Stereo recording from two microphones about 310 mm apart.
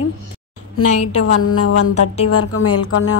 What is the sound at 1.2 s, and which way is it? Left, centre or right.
Speech, left.